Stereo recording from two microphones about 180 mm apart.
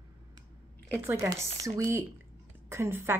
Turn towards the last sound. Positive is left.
turn(degrees=-15)  # may be behind; listen again after turning